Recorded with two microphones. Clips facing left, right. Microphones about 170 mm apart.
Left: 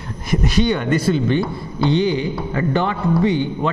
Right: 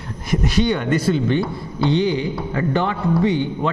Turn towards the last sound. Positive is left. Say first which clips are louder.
# left 1 dB
turn(degrees=15)  # may be behind; listen again after turning